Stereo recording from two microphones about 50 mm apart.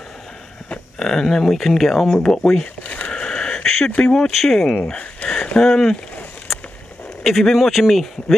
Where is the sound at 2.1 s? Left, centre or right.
Centre.